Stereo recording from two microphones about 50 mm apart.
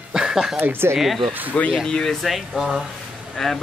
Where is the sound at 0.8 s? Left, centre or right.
Right.